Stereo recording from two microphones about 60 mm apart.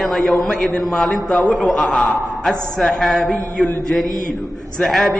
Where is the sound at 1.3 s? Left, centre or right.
Left.